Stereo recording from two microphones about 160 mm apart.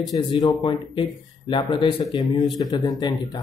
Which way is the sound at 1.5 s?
30° left (ahead or behind).